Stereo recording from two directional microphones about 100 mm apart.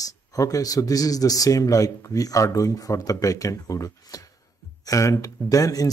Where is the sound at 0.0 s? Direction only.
35° left (ahead or behind).